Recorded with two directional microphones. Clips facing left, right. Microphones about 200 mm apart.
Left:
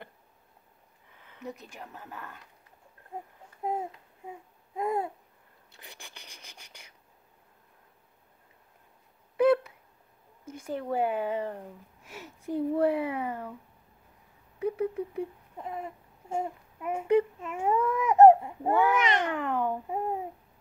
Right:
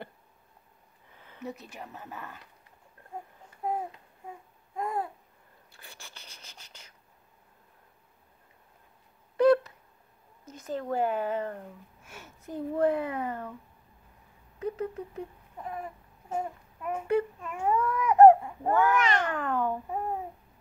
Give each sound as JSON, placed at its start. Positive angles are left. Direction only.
{"t": 1.4, "sound": "speech", "side_deg": -5}
{"t": 4.7, "sound": "babbling", "side_deg": 20}
{"t": 5.7, "sound": "rub", "side_deg": 20}
{"t": 9.4, "sound": "a sound", "side_deg": 5}
{"t": 10.5, "sound": "speech", "side_deg": 10}
{"t": 14.6, "sound": "speech", "side_deg": 10}
{"t": 15.6, "sound": "a sound", "side_deg": 25}
{"t": 16.8, "sound": "baby cry", "side_deg": 15}